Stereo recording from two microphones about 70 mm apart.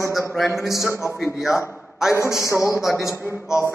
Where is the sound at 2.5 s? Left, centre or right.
Left.